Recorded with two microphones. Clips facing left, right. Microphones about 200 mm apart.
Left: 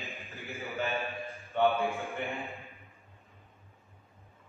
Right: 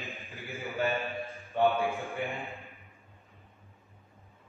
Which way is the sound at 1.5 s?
15° right (ahead or behind).